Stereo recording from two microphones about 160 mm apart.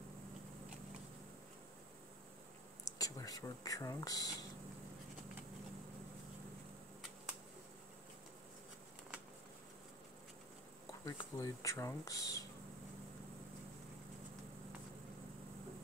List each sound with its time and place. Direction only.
2.8 s speech: 20° left (ahead or behind)
11.1 s speech: 25° left (ahead or behind)